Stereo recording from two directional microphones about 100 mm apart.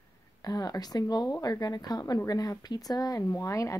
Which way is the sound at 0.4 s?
40° left (ahead or behind).